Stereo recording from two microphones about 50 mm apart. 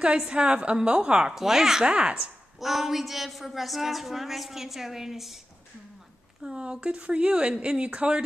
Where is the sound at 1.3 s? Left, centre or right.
Centre.